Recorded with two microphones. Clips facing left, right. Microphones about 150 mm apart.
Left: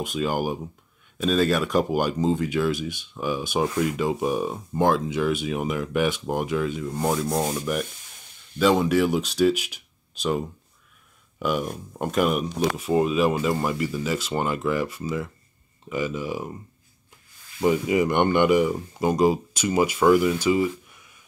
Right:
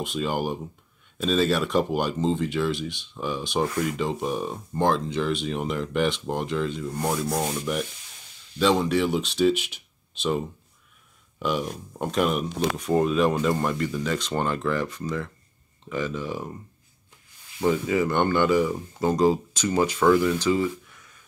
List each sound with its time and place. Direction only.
0.0 s speech: centre (ahead or behind)
11.3 s speech: 5° left (ahead or behind)
17.6 s speech: 15° left (ahead or behind)